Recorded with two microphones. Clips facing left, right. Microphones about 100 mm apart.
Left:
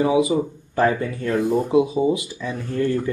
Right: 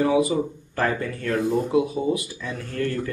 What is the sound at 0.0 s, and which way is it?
Speech, 15° left (ahead or behind).